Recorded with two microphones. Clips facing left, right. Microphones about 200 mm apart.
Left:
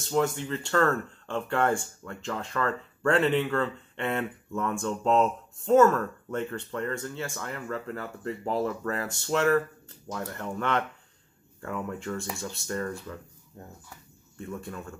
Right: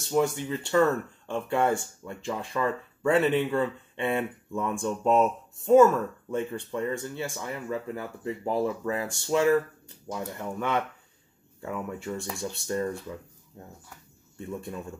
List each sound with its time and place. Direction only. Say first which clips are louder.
0.1 s speech: right 1 dB; 10° right (ahead or behind)
14.4 s speech: right 2 dB; 15° right (ahead or behind)